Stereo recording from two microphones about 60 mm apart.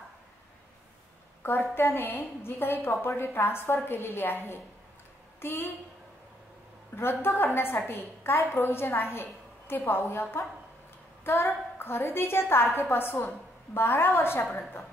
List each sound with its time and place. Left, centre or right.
1.4 s a woman's voice: left
7.0 s a woman's voice: left